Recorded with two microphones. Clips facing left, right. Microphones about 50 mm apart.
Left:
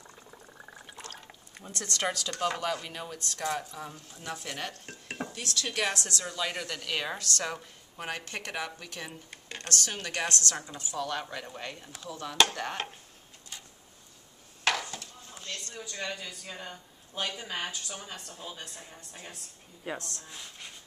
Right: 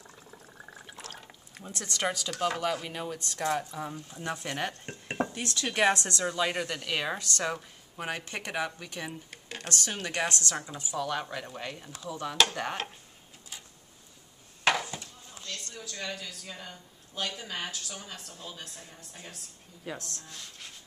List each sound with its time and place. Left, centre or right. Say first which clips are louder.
0.0 s liquid: even; centre
1.7 s speech: even; centre
4.8 s dishes: right 3 dB; right
5.2 s a woman's voice: right 4 dB; right; by 12.5 s centre
14.6 s a sound: right 2 dB; centre
15.4 s speech: left 1 dB; centre
19.9 s speech: left 2 dB; centre